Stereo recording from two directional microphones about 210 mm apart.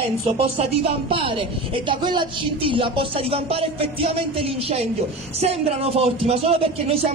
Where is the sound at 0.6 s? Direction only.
25° right (ahead or behind).